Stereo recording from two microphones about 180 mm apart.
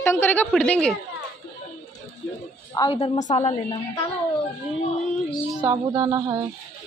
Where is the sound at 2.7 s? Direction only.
20° left (ahead or behind).